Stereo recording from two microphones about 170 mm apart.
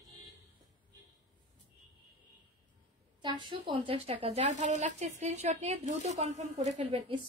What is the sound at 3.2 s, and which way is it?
A woman's voice, 25° right (ahead or behind).